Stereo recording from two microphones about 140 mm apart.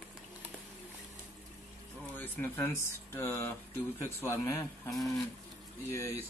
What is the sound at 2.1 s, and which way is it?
A man's voice, 15° left (ahead or behind).